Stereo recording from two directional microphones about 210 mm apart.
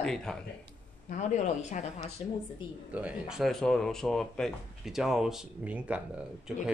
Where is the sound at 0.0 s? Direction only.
5° left (ahead or behind).